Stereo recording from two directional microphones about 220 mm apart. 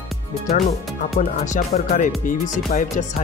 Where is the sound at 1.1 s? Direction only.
35° left (ahead or behind).